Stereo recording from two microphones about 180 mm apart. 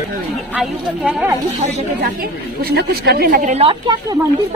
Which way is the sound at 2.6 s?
60° right (ahead or behind).